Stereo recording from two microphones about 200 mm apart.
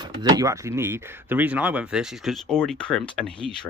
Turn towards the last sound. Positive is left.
turn(degrees=5)  # may be behind; listen again after turning